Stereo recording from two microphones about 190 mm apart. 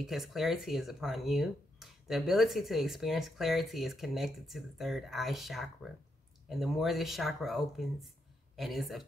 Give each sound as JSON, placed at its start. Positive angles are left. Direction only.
{"t": 0.0, "sound": "speech", "side_deg": 0}